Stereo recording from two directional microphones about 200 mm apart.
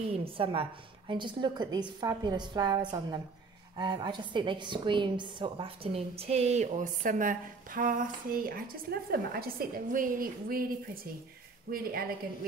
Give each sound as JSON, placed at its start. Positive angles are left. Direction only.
{"t": 0.1, "sound": "a woman's voice", "side_deg": -25}
{"t": 11.7, "sound": "a woman's voice", "side_deg": -50}